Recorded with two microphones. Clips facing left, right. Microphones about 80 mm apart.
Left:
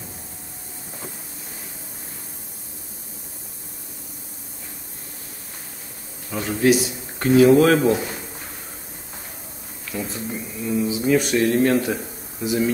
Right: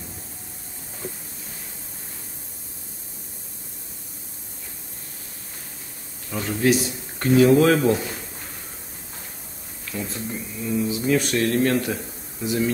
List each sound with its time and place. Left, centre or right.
6.3 s speech: centre
9.8 s speech: centre